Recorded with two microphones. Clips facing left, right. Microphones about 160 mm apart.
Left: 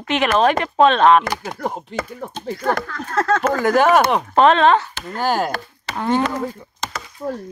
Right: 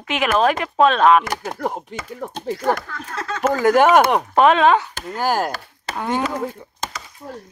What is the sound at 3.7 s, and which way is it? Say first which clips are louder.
Speech: even; 15° right (ahead or behind).